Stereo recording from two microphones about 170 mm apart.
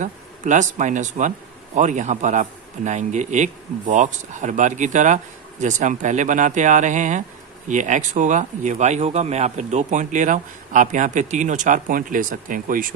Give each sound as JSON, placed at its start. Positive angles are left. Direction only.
{"t": 0.0, "sound": "a man's voice", "side_deg": -45}